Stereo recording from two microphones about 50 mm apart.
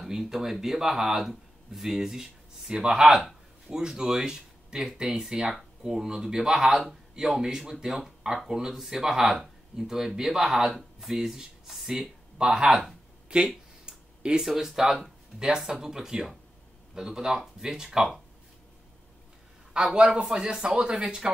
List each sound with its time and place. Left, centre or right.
0.0 s speech: centre
13.3 s speech: centre
13.8 s a sound: centre
14.4 s speech: centre
19.7 s speech: centre